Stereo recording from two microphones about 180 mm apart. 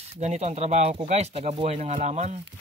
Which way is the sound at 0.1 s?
40° right (ahead or behind).